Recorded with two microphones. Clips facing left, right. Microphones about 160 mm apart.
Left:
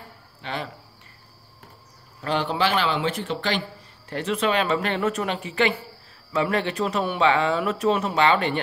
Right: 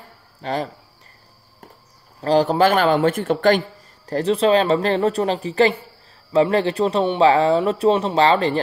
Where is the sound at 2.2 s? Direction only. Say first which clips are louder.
Right 8 dB; 35° right (ahead or behind).